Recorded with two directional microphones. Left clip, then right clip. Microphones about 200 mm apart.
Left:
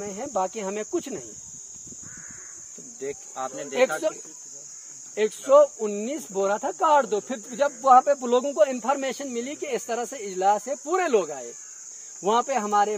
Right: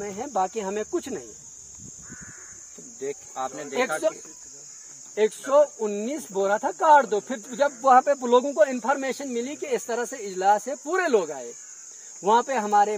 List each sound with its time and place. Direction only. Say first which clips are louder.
0.0 s speech: right 1 dB; 25° left (ahead or behind)
3.0 s speech: right 1 dB; 10° right (ahead or behind)
5.1 s speech: left 2 dB; 25° left (ahead or behind)